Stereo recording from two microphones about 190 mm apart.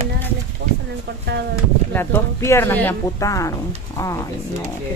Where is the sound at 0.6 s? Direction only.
60° right (ahead or behind).